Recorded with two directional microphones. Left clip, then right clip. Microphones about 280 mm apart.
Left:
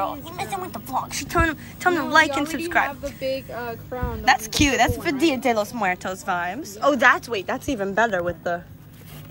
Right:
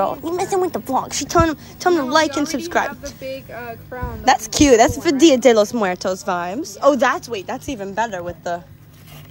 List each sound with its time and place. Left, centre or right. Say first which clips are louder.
0.0 s a sound: right 7 dB; right
0.6 s a woman's voice: right 6 dB; right
3.2 s speech: left 3 dB; centre
3.5 s music: even; centre
4.2 s a woman's voice: right 4 dB; right; by 8.6 s centre